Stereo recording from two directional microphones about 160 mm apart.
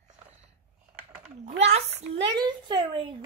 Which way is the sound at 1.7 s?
40° right (ahead or behind).